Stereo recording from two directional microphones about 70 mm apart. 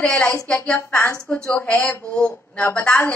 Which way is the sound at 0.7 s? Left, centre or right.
Left.